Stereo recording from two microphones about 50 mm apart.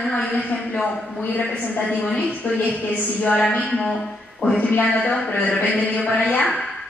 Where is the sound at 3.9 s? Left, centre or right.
Centre.